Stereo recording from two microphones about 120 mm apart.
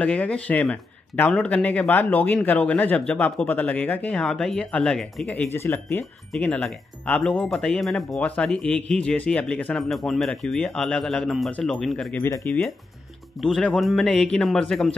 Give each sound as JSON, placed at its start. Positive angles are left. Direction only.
{"t": 0.0, "sound": "a man's voice", "side_deg": 10}
{"t": 5.3, "sound": "speech", "side_deg": 15}
{"t": 6.3, "sound": "speech", "side_deg": 10}
{"t": 12.4, "sound": "a man's voice", "side_deg": 15}
{"t": 13.4, "sound": "speech", "side_deg": 5}